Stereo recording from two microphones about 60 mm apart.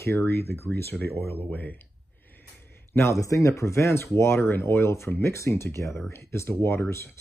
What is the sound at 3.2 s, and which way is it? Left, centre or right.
Speech, left.